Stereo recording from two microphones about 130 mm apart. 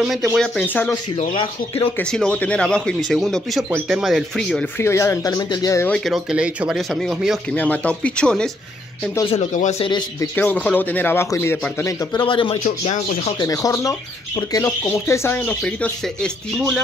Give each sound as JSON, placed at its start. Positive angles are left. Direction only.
{"t": 0.4, "sound": "speech", "side_deg": 5}
{"t": 1.3, "sound": "speech", "side_deg": 40}
{"t": 2.0, "sound": "speech", "side_deg": 10}
{"t": 4.7, "sound": "speech", "side_deg": 20}
{"t": 5.9, "sound": "speech", "side_deg": 5}
{"t": 7.5, "sound": "speech", "side_deg": 10}
{"t": 9.3, "sound": "speech", "side_deg": 65}
{"t": 9.8, "sound": "a man's voice", "side_deg": 35}
{"t": 10.3, "sound": "speech", "side_deg": 10}
{"t": 11.8, "sound": "a man's voice", "side_deg": 35}
{"t": 12.6, "sound": "speech", "side_deg": 65}
{"t": 13.4, "sound": "speech", "side_deg": 25}